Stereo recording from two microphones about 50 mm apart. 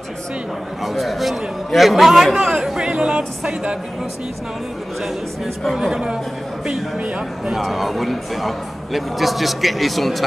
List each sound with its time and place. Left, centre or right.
0.8 s a man's voice: centre
5.8 s speech: centre
7.6 s a man's voice: centre